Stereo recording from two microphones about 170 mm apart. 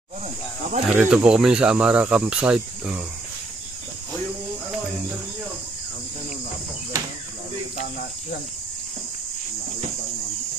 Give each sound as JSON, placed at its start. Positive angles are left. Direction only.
{"t": 0.8, "sound": "speech", "side_deg": -5}